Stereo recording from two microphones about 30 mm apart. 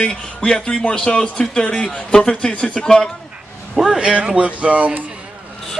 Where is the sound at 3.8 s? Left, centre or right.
Centre.